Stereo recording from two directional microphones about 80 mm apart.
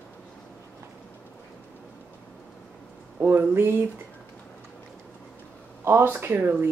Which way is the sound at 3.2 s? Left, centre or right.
Right.